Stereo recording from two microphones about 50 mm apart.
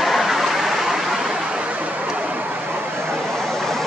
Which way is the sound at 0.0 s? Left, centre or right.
Centre.